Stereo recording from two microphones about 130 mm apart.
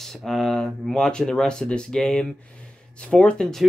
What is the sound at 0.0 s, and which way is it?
Speech, centre (ahead or behind).